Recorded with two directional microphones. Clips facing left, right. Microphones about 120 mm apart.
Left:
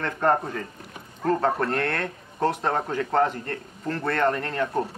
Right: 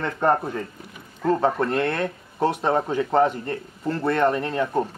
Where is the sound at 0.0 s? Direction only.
10° right (ahead or behind).